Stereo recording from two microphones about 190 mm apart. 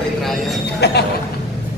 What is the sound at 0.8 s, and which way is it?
Speech, 60° left (ahead or behind).